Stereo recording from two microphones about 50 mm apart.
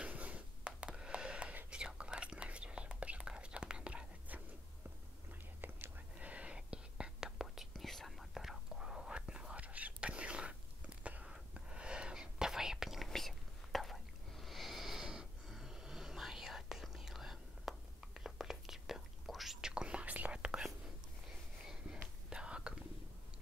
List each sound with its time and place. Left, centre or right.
0.0 s a sound: right
1.7 s whispering: centre
5.6 s whispering: right
6.1 s whispering: right; by 13.1 s centre
13.1 s whispering: centre
19.7 s whispering: right
21.6 s a sound: centre
22.3 s whispering: centre